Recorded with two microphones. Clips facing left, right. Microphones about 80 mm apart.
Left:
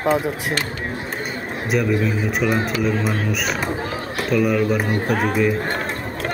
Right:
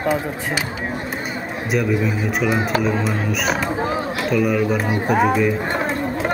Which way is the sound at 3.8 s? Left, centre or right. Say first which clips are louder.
Right 5 dB; right.